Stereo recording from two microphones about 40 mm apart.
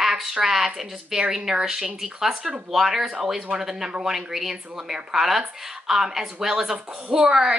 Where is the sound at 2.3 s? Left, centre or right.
Right.